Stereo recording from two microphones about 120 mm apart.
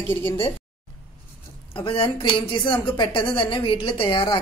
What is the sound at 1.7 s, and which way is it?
A woman's voice, 45° left (ahead or behind).